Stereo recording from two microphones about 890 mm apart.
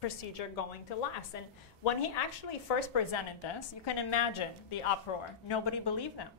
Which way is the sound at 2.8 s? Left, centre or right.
Left.